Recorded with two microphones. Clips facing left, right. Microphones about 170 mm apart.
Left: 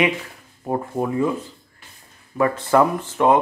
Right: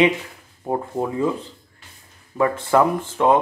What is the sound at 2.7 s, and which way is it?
Speech, 15° left (ahead or behind).